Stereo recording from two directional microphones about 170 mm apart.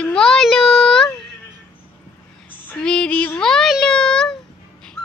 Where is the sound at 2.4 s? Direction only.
5° left (ahead or behind).